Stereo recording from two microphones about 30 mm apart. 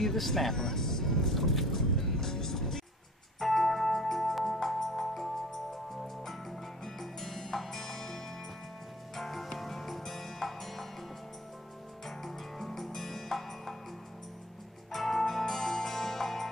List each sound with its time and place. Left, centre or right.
0.0 s music: centre
12.2 s music: centre
14.9 s music: centre